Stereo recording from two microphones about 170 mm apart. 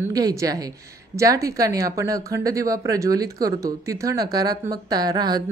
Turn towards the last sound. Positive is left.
turn(degrees=-25)  # may be behind; listen again after turning